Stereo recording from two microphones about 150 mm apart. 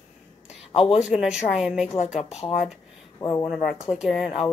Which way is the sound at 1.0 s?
5° right (ahead or behind).